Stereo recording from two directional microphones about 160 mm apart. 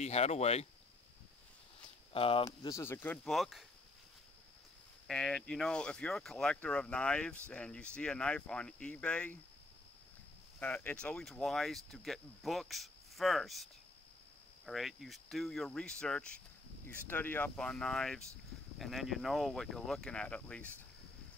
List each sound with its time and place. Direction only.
0.0 s speech: 40° left (ahead or behind)
2.1 s speech: 35° left (ahead or behind)
2.4 s speech: 20° left (ahead or behind)
3.3 s speech: centre (ahead or behind)
5.0 s speech: 5° left (ahead or behind)
10.6 s speech: 10° left (ahead or behind)
14.7 s speech: centre (ahead or behind)